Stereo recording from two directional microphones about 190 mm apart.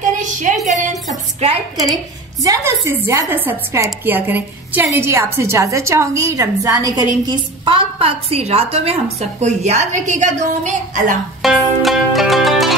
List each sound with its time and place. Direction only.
0.0 s a sound: 40° right (ahead or behind)
2.4 s a woman's voice: 15° right (ahead or behind); by 11.1 s 40° right (ahead or behind)
11.4 s music: centre (ahead or behind)